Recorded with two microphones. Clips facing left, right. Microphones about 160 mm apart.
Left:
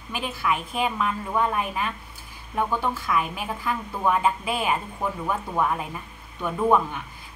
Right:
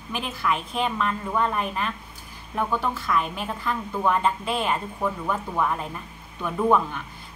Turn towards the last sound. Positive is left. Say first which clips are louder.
# even
turn(degrees=5)  # may be behind; listen again after turning